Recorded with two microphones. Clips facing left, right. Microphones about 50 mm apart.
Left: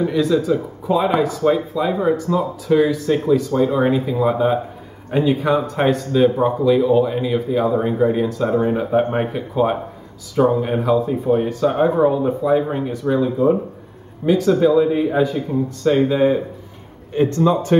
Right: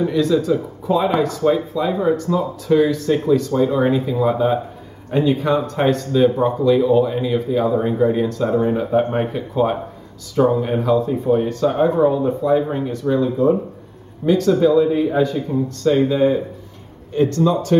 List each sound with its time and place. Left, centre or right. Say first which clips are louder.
0.0 s speech: even; centre; by 17.7 s left